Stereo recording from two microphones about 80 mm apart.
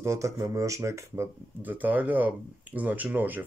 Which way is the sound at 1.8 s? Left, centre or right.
Right.